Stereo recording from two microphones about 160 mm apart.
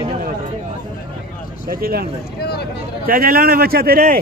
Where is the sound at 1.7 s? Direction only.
70° right (ahead or behind).